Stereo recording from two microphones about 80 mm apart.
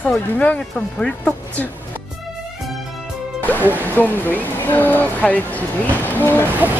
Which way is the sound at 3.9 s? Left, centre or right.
Left.